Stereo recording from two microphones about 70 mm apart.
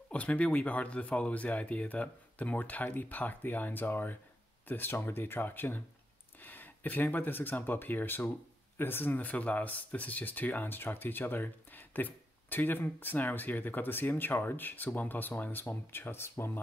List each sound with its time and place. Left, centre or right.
0.1 s speech: centre; by 16.5 s left